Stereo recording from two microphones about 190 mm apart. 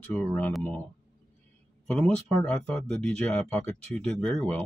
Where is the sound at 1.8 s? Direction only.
5° left (ahead or behind).